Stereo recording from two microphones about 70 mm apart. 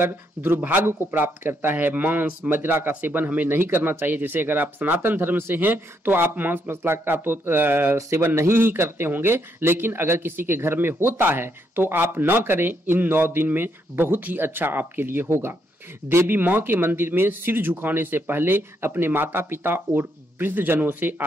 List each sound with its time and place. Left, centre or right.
0.0 s speech: right